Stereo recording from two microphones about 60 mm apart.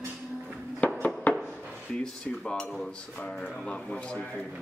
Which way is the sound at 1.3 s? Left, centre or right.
Left.